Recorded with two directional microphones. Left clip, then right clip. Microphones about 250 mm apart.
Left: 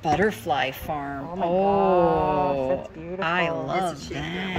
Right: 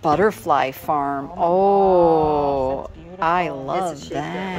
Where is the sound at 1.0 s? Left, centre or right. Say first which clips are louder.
Right 7 dB; right.